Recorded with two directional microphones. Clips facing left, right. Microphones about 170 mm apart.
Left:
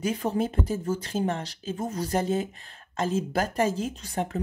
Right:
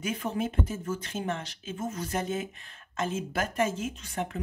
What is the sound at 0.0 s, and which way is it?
Speech, 35° left (ahead or behind).